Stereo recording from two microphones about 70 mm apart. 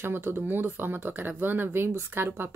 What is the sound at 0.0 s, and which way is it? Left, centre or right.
Speech, right.